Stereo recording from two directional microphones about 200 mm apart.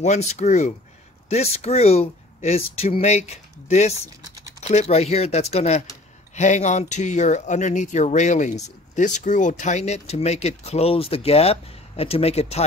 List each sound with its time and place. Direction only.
0.0 s speech: 35° left (ahead or behind)